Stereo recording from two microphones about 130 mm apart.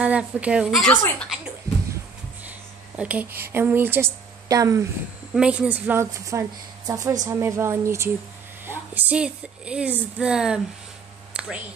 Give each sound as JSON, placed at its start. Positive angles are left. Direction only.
{"t": 0.0, "sound": "a woman's voice", "side_deg": -10}
{"t": 3.0, "sound": "a woman's voice", "side_deg": -10}
{"t": 5.3, "sound": "a woman's voice", "side_deg": -5}
{"t": 11.3, "sound": "a sound", "side_deg": -10}